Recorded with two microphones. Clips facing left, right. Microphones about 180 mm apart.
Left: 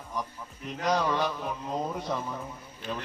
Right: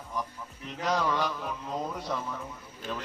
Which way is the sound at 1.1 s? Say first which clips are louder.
Left 1 dB; 20° left (ahead or behind).